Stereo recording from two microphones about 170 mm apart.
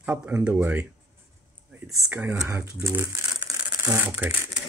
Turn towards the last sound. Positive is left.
turn(degrees=-15)  # may be behind; listen again after turning